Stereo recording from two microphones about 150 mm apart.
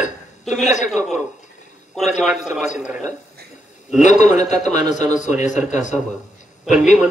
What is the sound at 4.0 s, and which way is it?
A man's voice, 55° left (ahead or behind).